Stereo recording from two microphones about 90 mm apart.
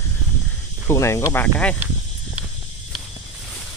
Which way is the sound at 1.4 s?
15° left (ahead or behind).